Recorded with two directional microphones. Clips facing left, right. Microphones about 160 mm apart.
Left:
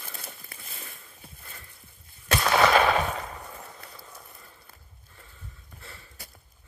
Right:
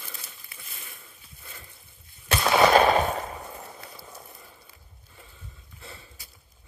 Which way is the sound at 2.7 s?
35° right (ahead or behind).